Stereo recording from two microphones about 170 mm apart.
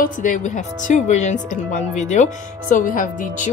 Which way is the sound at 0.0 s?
50° left (ahead or behind).